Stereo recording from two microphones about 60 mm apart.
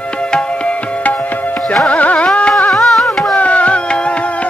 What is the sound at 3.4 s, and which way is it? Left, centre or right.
Music, left.